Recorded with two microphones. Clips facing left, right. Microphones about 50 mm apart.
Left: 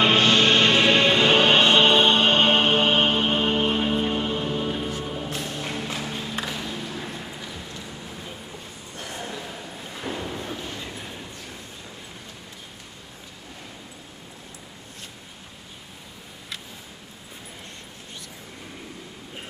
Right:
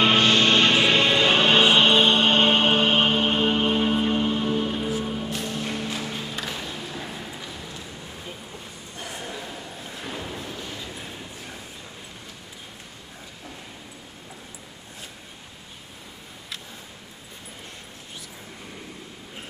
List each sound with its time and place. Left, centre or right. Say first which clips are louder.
0.0 s music: even; centre
0.4 s music: left 1 dB; centre
5.9 s a sound: left 1 dB; centre
10.8 s train: left 1 dB; centre